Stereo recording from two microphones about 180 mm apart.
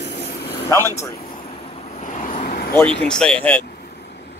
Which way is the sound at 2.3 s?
45° left (ahead or behind).